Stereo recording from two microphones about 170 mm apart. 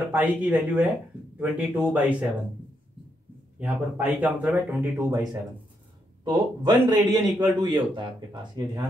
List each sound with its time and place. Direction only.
0.1 s speech: 10° right (ahead or behind)
3.5 s a man's voice: 10° right (ahead or behind)